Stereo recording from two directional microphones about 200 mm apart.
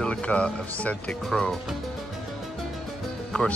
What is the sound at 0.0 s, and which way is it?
Speech, 5° left (ahead or behind).